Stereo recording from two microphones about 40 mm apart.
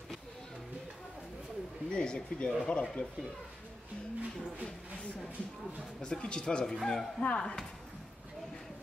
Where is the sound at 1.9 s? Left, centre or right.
Centre.